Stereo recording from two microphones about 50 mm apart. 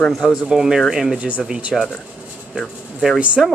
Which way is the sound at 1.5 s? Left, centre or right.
Centre.